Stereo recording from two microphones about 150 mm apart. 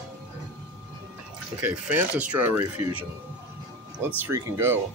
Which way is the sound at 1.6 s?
10° right (ahead or behind).